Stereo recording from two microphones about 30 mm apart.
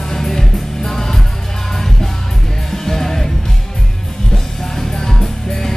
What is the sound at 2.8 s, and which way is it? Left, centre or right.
Music, centre.